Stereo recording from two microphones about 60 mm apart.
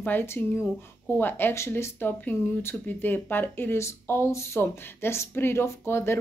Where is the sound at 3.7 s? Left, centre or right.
Left.